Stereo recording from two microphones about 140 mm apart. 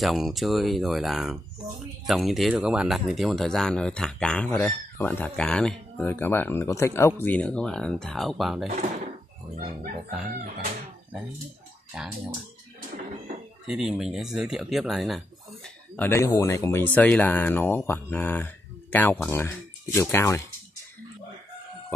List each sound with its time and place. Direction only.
0.0 s speech: centre (ahead or behind)
8.6 s speech: 75° right (ahead or behind)
11.9 s speech: 5° right (ahead or behind)
13.7 s speech: 5° right (ahead or behind)
16.0 s speech: 20° left (ahead or behind)